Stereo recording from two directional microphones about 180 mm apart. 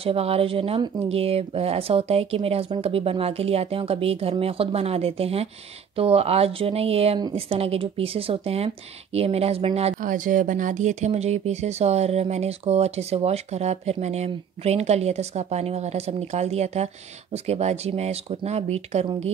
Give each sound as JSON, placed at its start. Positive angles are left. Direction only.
{"t": 0.0, "sound": "speech", "side_deg": -35}
{"t": 9.9, "sound": "speech", "side_deg": -45}